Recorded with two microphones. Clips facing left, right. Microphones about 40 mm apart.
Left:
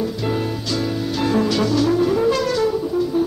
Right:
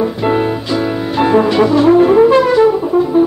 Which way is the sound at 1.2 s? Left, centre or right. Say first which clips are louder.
Right 9 dB; right.